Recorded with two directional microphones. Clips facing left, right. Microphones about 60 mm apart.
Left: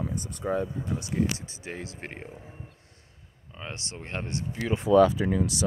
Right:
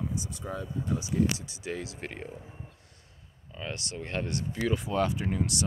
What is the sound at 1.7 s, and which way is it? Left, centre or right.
Speech, left.